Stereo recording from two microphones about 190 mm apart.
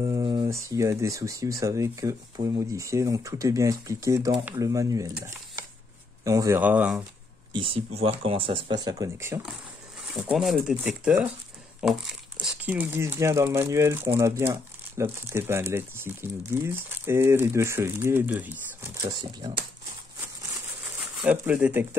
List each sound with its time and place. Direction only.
0.0 s speech: 20° right (ahead or behind)
6.2 s speech: 15° right (ahead or behind)
7.5 s speech: 30° right (ahead or behind)
10.1 s speech: centre (ahead or behind)
21.2 s speech: 5° right (ahead or behind)